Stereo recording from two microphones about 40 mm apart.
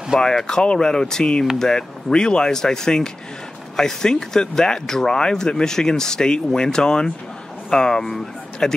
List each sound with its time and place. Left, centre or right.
0.1 s speech: centre
0.5 s speech: left